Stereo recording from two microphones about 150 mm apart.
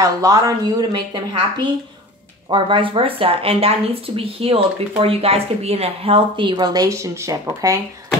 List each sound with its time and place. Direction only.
0.0 s speech: 25° right (ahead or behind)
2.5 s speech: 35° right (ahead or behind)